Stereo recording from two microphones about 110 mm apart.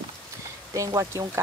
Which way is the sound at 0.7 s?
30° right (ahead or behind).